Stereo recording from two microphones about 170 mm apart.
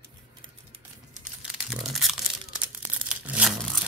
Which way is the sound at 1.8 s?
Centre (ahead or behind).